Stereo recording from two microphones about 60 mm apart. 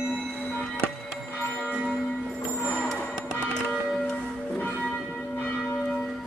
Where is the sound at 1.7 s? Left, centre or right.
Centre.